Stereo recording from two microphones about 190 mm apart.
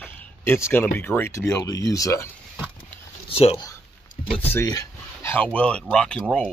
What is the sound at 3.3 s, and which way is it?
Speech, 30° left (ahead or behind).